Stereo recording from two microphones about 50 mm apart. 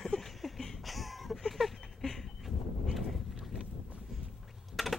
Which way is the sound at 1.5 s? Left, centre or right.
Centre.